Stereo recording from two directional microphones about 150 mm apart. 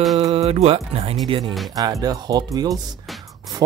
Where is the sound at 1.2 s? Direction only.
30° right (ahead or behind).